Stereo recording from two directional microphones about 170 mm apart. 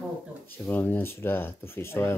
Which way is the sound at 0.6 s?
10° left (ahead or behind).